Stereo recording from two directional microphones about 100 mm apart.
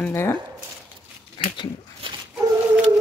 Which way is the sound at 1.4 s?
55° left (ahead or behind).